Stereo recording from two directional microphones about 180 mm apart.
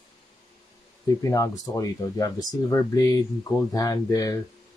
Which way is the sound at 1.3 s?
20° left (ahead or behind).